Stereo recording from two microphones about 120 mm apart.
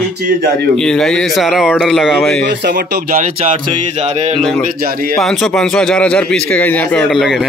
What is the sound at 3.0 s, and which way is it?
Speech, 90° right.